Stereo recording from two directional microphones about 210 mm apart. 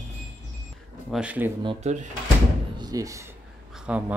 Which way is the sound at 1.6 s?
25° right (ahead or behind).